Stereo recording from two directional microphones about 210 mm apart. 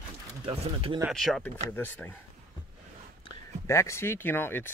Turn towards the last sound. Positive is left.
turn(degrees=10)  # may be behind; listen again after turning